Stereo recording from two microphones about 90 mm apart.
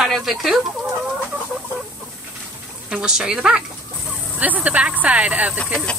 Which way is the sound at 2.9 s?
10° right (ahead or behind).